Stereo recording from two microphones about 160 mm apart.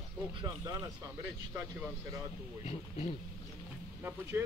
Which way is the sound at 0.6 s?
20° right (ahead or behind).